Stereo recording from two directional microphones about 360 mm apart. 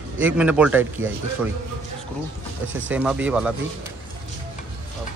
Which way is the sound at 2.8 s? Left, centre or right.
Centre.